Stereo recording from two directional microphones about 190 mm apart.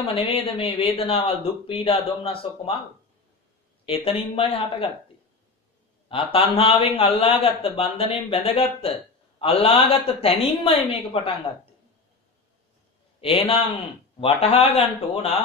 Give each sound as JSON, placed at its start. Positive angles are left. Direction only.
{"t": 0.1, "sound": "a man's voice", "side_deg": 30}
{"t": 3.8, "sound": "a man's voice", "side_deg": 30}
{"t": 6.0, "sound": "a man's voice", "side_deg": 30}
{"t": 13.2, "sound": "a man's voice", "side_deg": 30}